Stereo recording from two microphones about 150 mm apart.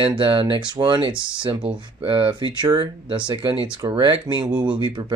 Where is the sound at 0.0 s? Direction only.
35° right (ahead or behind).